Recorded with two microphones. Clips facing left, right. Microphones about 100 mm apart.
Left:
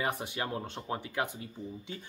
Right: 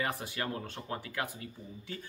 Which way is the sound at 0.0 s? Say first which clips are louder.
Left 2 dB; 20° left (ahead or behind).